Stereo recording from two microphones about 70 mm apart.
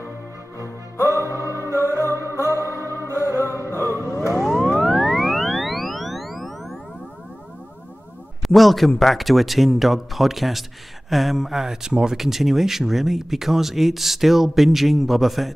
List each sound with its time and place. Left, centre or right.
1.0 s music: right
1.3 s music: left
2.0 s music: right
2.3 s music: left
2.6 s music: right
3.8 s a sound: left
4.8 s music: centre
8.4 s speech: centre